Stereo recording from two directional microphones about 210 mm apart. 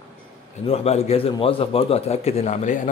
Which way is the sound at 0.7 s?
30° left (ahead or behind).